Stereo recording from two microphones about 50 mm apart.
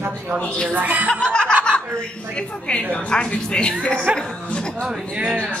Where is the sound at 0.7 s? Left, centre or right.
Right.